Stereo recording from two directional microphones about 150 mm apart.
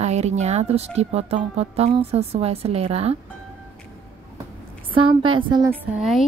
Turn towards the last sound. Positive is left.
turn(degrees=0)  # may be behind; listen again after turning